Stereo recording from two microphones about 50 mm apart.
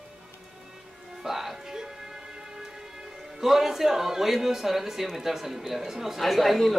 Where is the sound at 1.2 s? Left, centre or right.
Centre.